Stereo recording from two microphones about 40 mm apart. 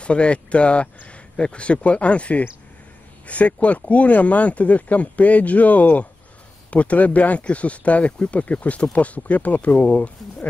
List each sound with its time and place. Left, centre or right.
0.0 s speech: left